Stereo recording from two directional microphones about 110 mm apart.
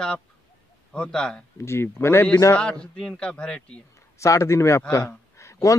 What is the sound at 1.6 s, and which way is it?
Speech, 25° left (ahead or behind).